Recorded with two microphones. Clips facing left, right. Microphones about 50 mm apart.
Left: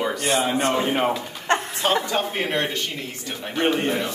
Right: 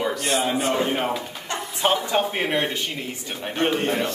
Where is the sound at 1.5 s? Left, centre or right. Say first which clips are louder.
Left 9 dB; left.